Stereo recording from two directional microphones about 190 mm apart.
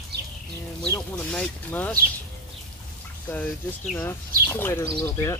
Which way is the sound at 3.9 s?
10° left (ahead or behind).